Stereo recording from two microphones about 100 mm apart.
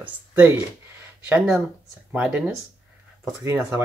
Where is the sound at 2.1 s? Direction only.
15° right (ahead or behind).